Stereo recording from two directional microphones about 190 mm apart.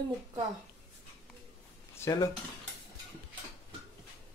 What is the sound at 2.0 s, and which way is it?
Speech, 20° left (ahead or behind).